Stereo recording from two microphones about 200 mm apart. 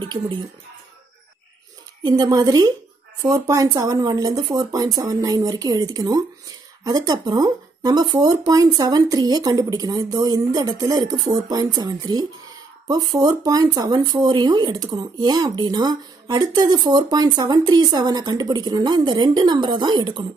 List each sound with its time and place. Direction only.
0.0 s speech: 25° right (ahead or behind)
2.0 s speech: 20° right (ahead or behind)